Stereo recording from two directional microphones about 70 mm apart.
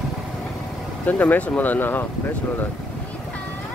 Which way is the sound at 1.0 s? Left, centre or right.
Left.